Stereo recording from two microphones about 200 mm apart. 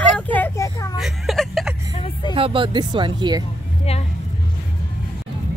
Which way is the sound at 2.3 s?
25° right (ahead or behind).